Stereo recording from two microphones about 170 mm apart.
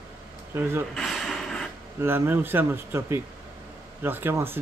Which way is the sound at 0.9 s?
5° left (ahead or behind).